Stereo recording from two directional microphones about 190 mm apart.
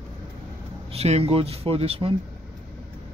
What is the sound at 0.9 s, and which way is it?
Speech, 35° right (ahead or behind).